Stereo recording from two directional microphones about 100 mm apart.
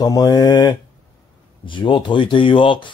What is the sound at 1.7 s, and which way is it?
Speech, 55° left (ahead or behind).